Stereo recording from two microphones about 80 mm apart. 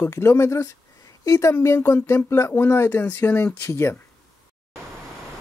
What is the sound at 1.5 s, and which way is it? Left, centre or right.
Speech, left.